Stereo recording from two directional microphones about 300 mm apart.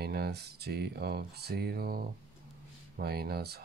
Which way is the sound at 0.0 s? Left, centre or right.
Right.